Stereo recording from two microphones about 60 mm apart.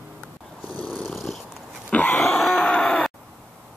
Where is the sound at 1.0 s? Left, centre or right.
Centre.